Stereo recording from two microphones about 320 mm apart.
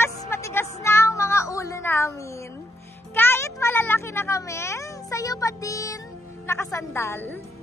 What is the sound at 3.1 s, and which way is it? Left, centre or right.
A child's voice, centre.